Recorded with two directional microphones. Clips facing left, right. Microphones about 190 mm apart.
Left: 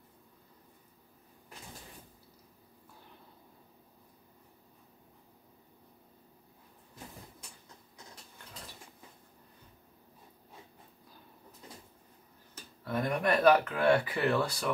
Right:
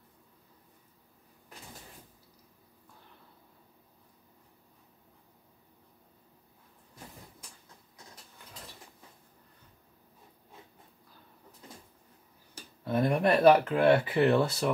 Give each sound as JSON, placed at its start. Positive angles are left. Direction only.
{"t": 12.8, "sound": "speech", "side_deg": -25}